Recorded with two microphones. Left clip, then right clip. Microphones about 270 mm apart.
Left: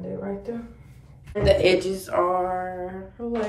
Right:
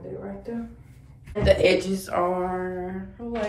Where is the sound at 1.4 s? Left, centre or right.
Centre.